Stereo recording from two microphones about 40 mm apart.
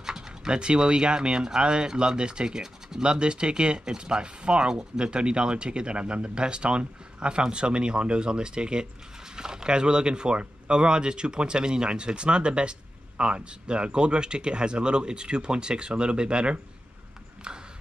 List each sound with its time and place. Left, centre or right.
0.0 s speech: centre
17.5 s clip-clop: right